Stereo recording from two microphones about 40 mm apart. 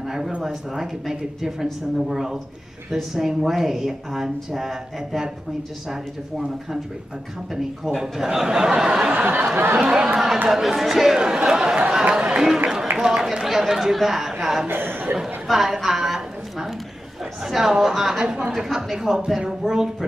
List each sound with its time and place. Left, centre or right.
0.0 s a sound: centre
0.4 s speech: centre
9.2 s a sound: right
10.0 s speech: centre
11.1 s speech: centre
14.7 s chuckle: right
15.5 s speech: centre
16.1 s a sound: centre
17.2 s speech: centre